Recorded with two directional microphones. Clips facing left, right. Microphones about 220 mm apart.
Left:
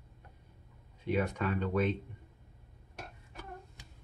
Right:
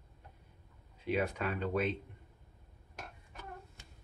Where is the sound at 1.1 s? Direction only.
10° right (ahead or behind).